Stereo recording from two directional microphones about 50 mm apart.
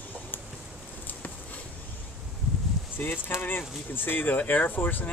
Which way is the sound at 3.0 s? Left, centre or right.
Left.